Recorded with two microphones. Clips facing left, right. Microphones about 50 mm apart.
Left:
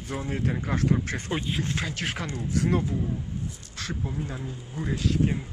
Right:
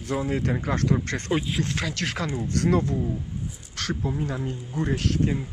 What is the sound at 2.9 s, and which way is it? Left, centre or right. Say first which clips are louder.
Speech: right 2 dB; centre.